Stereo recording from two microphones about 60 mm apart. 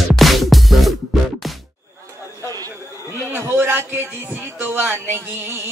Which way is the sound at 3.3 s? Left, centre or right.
Right.